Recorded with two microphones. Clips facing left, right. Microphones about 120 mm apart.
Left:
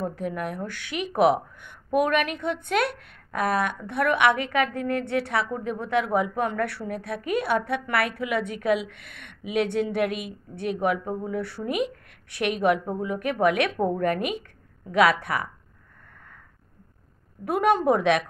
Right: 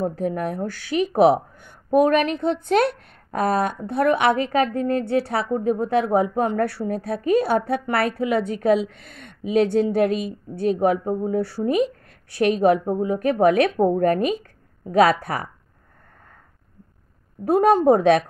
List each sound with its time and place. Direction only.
0.0 s a woman's voice: 35° right (ahead or behind)
17.5 s a woman's voice: 35° right (ahead or behind)